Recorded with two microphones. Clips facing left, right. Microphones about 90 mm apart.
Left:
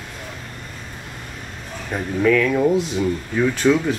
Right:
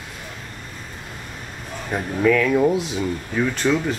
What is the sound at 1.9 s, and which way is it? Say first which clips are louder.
Speech: left 1 dB; 5° right (ahead or behind).